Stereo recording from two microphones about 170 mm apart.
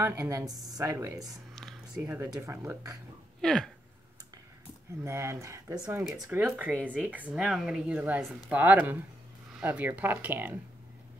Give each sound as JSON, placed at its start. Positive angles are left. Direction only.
{"t": 0.0, "sound": "speech", "side_deg": -15}
{"t": 1.5, "sound": "a sound", "side_deg": 0}
{"t": 2.0, "sound": "speech", "side_deg": -15}
{"t": 3.3, "sound": "speech", "side_deg": 5}
{"t": 5.0, "sound": "speech", "side_deg": -15}